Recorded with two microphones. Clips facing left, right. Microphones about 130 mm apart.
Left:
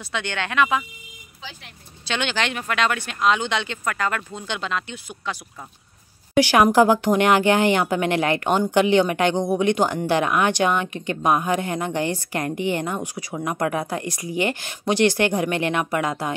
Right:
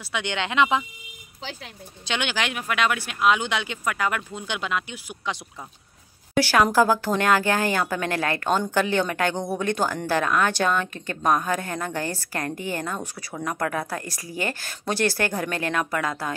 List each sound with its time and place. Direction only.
0.1 s speech: 15° right (ahead or behind)
2.0 s speech: 10° right (ahead or behind)
6.4 s speech: 20° left (ahead or behind)